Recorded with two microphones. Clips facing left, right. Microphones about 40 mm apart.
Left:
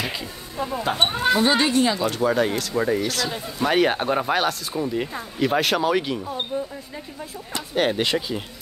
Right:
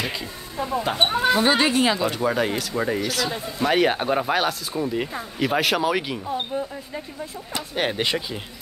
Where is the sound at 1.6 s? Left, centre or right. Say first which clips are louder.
Even; right.